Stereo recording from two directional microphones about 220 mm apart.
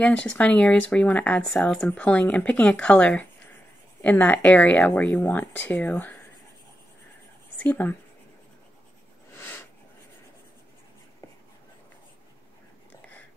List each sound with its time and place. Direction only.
0.0 s speech: 5° left (ahead or behind)
7.6 s speech: 10° left (ahead or behind)
9.3 s a sound: 10° left (ahead or behind)